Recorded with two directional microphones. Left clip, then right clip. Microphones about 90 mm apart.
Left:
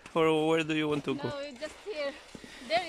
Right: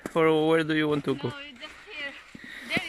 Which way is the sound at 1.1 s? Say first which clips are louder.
Even; 55° left (ahead or behind).